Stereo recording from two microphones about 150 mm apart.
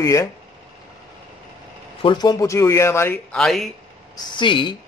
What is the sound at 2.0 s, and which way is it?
Speech, 30° left (ahead or behind).